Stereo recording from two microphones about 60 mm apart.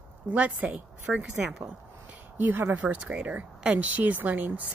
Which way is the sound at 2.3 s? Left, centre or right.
Right.